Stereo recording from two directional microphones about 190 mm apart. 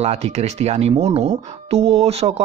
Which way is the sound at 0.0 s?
35° right (ahead or behind).